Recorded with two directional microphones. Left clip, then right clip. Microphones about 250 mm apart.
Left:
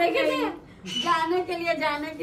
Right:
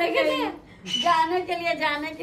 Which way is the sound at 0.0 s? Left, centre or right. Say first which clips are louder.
Even; centre.